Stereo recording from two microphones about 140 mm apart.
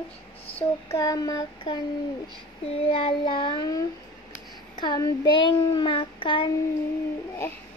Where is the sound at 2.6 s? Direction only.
45° left (ahead or behind).